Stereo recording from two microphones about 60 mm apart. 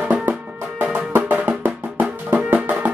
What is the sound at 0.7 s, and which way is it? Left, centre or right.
Music, right.